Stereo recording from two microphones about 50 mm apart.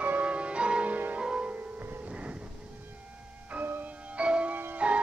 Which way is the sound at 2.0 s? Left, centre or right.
Right.